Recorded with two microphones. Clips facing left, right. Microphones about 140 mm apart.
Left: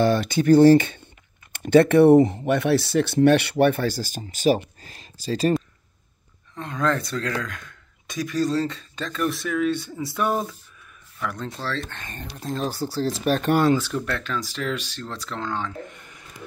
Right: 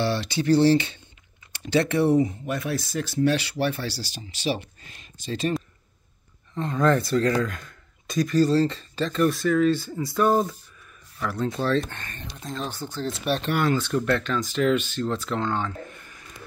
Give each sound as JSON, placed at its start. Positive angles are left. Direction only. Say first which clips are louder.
{"t": 0.0, "sound": "speech", "louder": "left 5 dB", "side_deg": 50}
{"t": 6.5, "sound": "speech", "louder": "right 3 dB", "side_deg": -5}
{"t": 12.4, "sound": "speech", "louder": "left 5 dB", "side_deg": 35}
{"t": 13.7, "sound": "speech", "louder": "right 3 dB", "side_deg": 5}